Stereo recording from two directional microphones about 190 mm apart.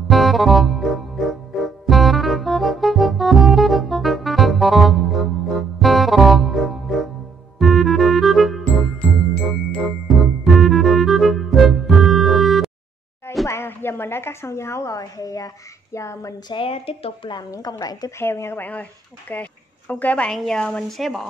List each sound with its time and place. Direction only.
0.1 s music: centre (ahead or behind)
9.7 s music: centre (ahead or behind)
13.5 s a woman's voice: 10° left (ahead or behind)